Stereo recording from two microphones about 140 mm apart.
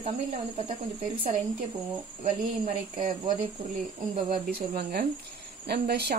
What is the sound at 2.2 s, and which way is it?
Speech, 45° right (ahead or behind).